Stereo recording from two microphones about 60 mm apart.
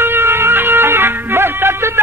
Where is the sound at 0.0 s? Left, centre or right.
Right.